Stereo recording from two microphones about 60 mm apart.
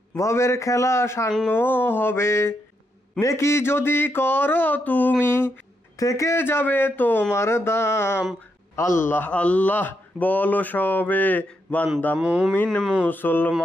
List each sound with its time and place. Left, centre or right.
0.1 s a man's voice: left
1.5 s speech: left
2.1 s a man's voice: left
5.2 s speech: left
5.9 s a man's voice: left
6.3 s speech: left
7.3 s a man's voice: left
9.1 s speech: left
12.2 s speech: centre
13.1 s speech: left